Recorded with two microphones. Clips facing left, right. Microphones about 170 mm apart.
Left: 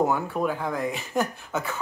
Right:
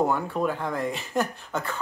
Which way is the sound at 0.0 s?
5° left (ahead or behind).